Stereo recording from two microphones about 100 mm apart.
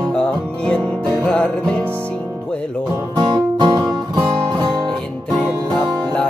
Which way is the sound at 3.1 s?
45° right (ahead or behind).